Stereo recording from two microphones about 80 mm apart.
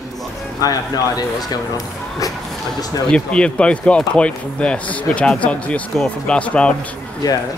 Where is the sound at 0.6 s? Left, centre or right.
Left.